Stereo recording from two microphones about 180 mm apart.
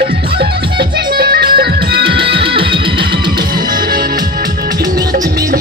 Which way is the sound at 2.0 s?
30° right (ahead or behind).